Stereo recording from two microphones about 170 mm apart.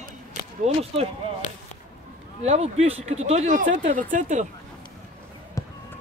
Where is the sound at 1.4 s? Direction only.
45° left (ahead or behind).